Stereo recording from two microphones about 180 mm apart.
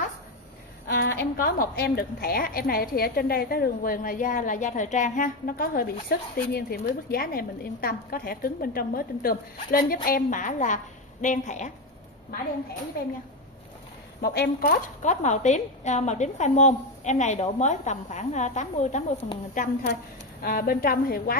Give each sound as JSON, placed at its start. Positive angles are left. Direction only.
{"t": 0.9, "sound": "a woman's voice", "side_deg": 60}
{"t": 14.2, "sound": "a woman's voice", "side_deg": 60}